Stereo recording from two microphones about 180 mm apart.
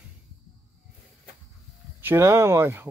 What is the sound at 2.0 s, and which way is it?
Speech, 15° right (ahead or behind).